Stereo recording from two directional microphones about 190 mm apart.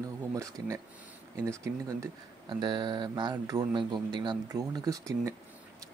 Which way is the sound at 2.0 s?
25° right (ahead or behind).